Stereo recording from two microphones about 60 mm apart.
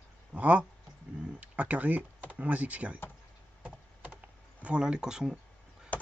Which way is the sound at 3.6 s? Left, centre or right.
Right.